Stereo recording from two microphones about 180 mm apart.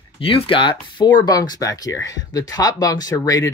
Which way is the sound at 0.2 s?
30° left (ahead or behind).